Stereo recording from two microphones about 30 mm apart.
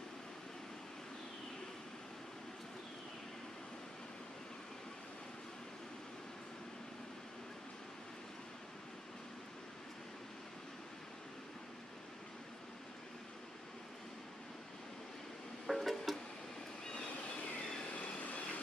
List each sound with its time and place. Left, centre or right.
15.6 s music: centre
18.2 s vehicle: left